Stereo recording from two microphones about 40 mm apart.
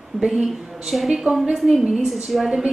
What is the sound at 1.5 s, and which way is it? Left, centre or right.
Speech, centre.